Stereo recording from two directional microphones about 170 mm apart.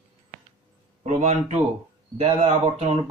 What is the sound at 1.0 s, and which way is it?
Speech, 45° right (ahead or behind).